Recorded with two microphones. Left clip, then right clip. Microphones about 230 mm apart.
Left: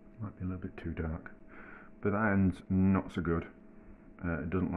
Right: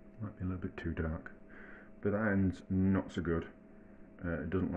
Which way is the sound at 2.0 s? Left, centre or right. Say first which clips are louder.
Left 3 dB; left.